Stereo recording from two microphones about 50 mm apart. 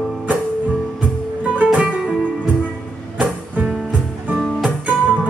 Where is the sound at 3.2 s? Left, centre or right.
Right.